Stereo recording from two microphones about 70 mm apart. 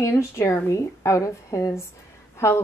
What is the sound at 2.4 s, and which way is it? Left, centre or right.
Speech, left.